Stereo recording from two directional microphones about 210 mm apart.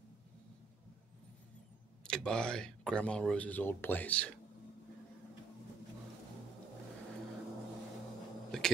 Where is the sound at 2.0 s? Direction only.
5° left (ahead or behind).